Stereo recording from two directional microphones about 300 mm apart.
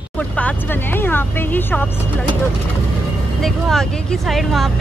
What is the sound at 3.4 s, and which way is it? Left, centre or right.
Speech, centre.